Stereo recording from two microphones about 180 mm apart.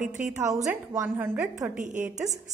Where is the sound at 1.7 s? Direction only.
45° right (ahead or behind).